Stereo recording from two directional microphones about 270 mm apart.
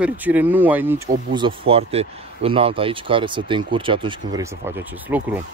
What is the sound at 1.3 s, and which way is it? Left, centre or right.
Speech, centre.